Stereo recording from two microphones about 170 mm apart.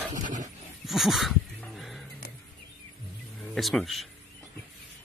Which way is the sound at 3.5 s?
Centre (ahead or behind).